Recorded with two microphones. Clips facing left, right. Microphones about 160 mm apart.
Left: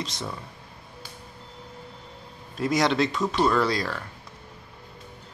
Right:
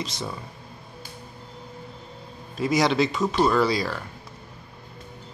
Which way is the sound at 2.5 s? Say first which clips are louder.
Right 1 dB; 5° right (ahead or behind).